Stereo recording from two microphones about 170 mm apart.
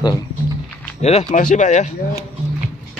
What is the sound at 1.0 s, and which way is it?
Speech, 40° left (ahead or behind).